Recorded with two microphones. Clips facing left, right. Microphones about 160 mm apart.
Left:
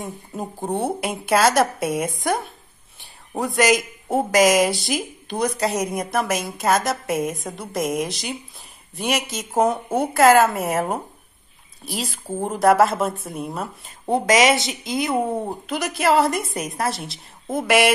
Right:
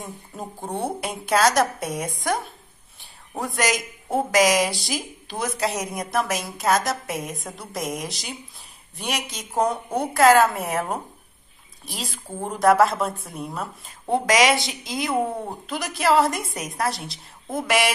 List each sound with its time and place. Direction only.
1.0 s speech: 5° left (ahead or behind)
9.5 s speech: 25° left (ahead or behind)
9.9 s speech: centre (ahead or behind)